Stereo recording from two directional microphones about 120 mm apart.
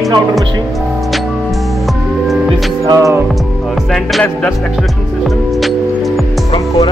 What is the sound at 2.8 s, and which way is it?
Music, 25° right (ahead or behind).